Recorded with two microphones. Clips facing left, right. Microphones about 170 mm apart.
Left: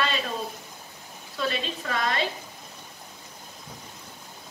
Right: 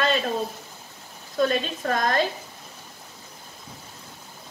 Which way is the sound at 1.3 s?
45° right (ahead or behind).